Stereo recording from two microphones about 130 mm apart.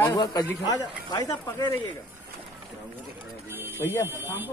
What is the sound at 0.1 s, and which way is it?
A man's voice, 30° left (ahead or behind).